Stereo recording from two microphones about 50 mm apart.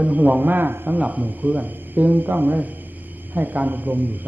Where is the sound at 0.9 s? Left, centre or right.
Right.